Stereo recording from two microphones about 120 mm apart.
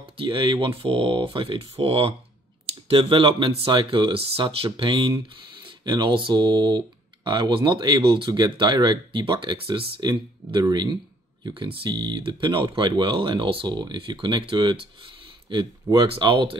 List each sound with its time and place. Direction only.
0.2 s speech: 45° right (ahead or behind)